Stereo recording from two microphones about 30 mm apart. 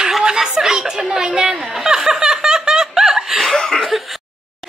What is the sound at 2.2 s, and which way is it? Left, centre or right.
Snicker, right.